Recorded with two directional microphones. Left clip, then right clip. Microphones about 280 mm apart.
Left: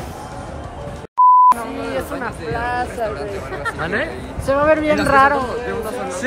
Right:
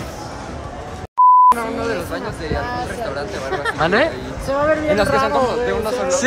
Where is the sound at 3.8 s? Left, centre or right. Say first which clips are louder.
Right 7 dB; centre.